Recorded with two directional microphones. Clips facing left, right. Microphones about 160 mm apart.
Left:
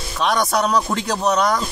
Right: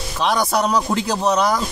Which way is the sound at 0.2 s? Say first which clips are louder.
Even; centre (ahead or behind).